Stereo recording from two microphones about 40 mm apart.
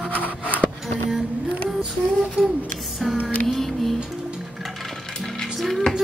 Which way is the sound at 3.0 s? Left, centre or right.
Centre.